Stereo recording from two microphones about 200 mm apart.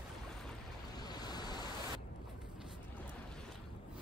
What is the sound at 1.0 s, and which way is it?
Waves, 20° left (ahead or behind).